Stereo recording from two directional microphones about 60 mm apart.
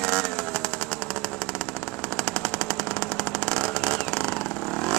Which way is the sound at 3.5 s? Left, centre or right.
Centre.